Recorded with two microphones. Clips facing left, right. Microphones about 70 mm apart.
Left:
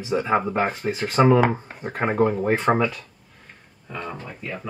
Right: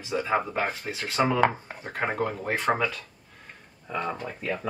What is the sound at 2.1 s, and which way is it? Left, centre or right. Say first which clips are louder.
Speech: left 8 dB; centre.